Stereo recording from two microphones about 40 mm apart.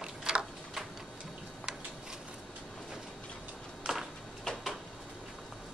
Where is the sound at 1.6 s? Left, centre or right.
Centre.